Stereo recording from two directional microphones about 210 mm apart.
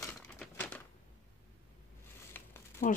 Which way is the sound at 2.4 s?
10° left (ahead or behind).